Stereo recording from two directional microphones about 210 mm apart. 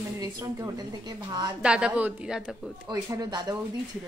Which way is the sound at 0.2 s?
15° right (ahead or behind).